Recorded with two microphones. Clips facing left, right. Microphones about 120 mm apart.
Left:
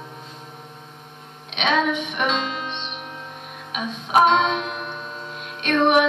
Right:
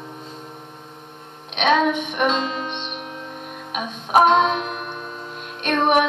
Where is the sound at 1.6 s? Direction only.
50° right (ahead or behind).